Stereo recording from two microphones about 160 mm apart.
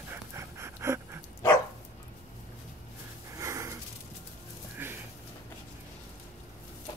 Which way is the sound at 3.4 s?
20° right (ahead or behind).